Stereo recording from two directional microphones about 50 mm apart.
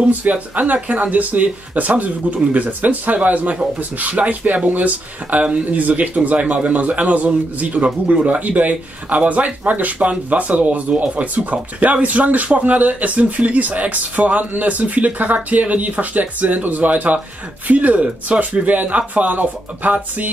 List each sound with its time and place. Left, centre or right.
0.0 s a man's voice: right